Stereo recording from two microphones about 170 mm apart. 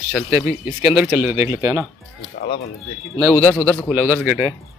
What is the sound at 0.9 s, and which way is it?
Speech, 5° right (ahead or behind).